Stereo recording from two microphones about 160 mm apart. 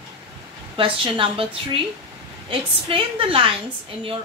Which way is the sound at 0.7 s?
30° right (ahead or behind).